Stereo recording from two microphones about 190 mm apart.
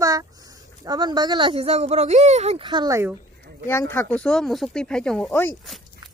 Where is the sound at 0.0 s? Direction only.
20° right (ahead or behind).